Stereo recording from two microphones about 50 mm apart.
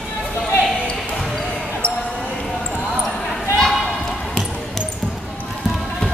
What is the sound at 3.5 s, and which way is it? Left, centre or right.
Basketball bounce, centre.